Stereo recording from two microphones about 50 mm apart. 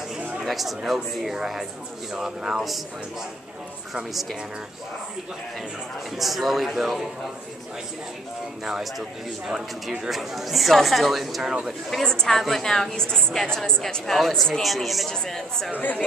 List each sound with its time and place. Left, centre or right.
0.4 s speech: centre
4.1 s speech: centre
6.1 s speech: centre
10.0 s speech: centre
11.9 s a woman's voice: centre
15.0 s a woman's voice: centre